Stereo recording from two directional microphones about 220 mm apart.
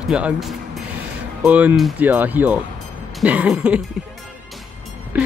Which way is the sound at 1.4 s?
5° right (ahead or behind).